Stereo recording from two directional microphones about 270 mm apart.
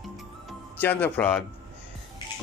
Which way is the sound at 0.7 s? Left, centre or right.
Centre.